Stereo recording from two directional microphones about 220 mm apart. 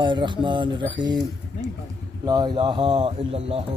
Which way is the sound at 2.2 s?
20° right (ahead or behind).